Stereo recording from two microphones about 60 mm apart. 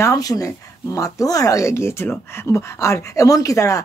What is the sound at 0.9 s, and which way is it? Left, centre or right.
Speech, left.